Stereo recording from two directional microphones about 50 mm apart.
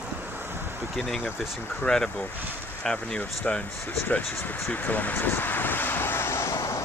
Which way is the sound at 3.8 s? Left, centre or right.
Left.